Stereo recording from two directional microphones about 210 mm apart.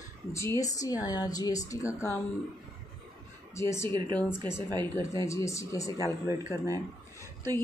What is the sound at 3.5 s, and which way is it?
Speech, 15° left (ahead or behind).